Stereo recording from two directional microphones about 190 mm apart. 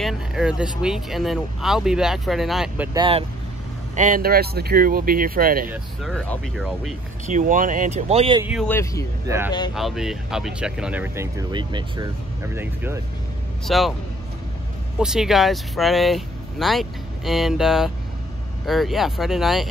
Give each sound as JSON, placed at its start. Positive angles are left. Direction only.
{"t": 0.0, "sound": "speech", "side_deg": -5}
{"t": 2.9, "sound": "speech", "side_deg": -25}
{"t": 3.9, "sound": "speech", "side_deg": -45}
{"t": 6.0, "sound": "speech", "side_deg": 5}
{"t": 7.2, "sound": "speech", "side_deg": -40}
{"t": 8.6, "sound": "speech", "side_deg": 15}
{"t": 9.8, "sound": "speech", "side_deg": 0}
{"t": 12.5, "sound": "speech", "side_deg": -10}
{"t": 13.7, "sound": "speech", "side_deg": 0}
{"t": 15.0, "sound": "speech", "side_deg": -5}